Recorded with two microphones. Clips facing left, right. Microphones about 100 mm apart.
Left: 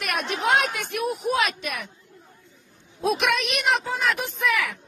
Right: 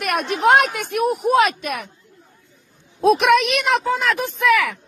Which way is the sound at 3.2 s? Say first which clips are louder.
Right 7 dB; 85° right.